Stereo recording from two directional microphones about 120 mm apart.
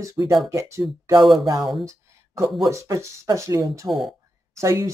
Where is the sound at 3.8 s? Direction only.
Centre (ahead or behind).